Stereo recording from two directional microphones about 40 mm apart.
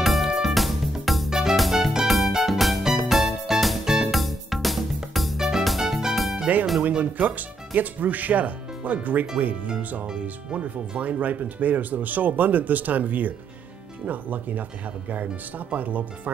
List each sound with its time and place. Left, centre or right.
0.0 s music: centre
1.3 s music: centre
2.3 s music: centre
4.1 s music: centre
6.5 s music: right
7.0 s speech: right
15.7 s speech: right